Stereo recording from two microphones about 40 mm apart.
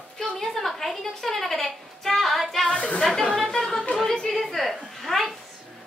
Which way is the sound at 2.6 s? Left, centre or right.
Left.